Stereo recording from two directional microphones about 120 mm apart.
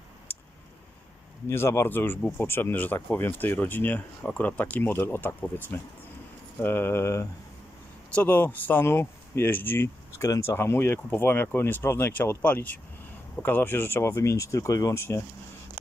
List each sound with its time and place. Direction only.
1.5 s speech: 20° left (ahead or behind)